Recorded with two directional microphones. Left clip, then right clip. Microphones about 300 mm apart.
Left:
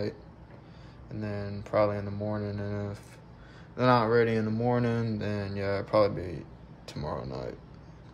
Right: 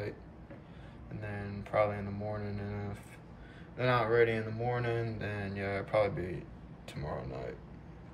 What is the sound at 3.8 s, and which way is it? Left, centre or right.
Speech, centre.